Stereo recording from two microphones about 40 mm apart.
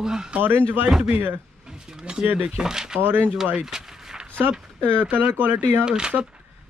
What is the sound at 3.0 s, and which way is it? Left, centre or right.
Speech, right.